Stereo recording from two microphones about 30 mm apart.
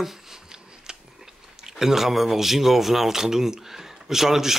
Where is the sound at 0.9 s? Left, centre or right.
Right.